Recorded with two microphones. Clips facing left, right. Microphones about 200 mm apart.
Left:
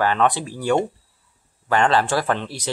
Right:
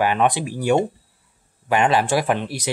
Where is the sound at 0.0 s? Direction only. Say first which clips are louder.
Right 1 dB; 15° right (ahead or behind).